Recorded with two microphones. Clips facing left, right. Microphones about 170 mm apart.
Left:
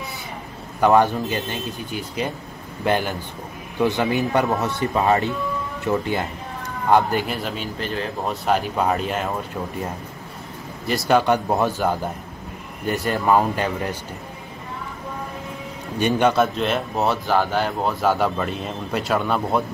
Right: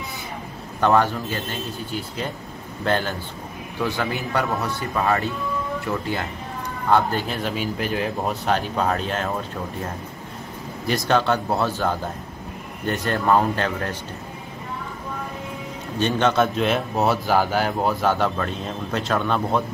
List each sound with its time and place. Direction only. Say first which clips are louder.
0.7 s a man's voice: left 3 dB; 15° left (ahead or behind)
7.3 s speech: right 2 dB; centre (ahead or behind)
8.5 s a man's voice: left 3 dB; 5° left (ahead or behind)
10.9 s a man's voice: left 2 dB; 10° left (ahead or behind)
12.8 s speech: left 2 dB; centre (ahead or behind)
13.1 s a man's voice: even; 10° left (ahead or behind)
16.0 s a man's voice: left 2 dB; 10° left (ahead or behind)
16.5 s speech: right 1 dB; centre (ahead or behind)